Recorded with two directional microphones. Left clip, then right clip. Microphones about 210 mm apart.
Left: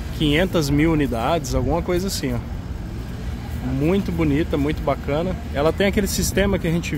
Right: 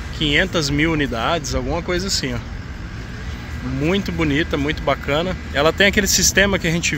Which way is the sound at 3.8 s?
10° left (ahead or behind).